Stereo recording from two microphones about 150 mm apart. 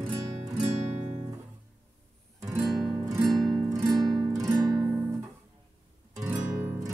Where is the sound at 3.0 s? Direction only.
20° right (ahead or behind).